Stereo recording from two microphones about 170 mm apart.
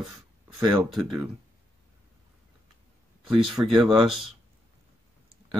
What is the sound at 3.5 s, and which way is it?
Speech, centre (ahead or behind).